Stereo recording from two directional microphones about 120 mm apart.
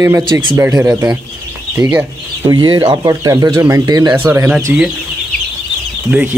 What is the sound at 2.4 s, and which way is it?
Speech, 35° right (ahead or behind).